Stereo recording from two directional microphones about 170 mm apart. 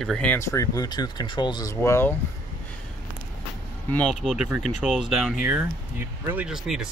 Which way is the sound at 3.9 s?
5° left (ahead or behind).